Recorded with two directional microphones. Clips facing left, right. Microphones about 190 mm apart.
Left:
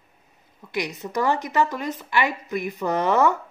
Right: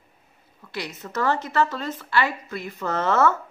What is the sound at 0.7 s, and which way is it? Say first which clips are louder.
Speech: left 4 dB; 15° left (ahead or behind).